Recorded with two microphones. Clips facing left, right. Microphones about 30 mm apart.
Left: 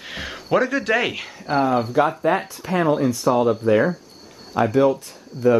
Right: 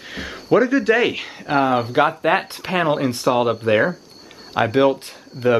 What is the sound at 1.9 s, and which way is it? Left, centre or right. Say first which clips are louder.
Speech: right 2 dB; right.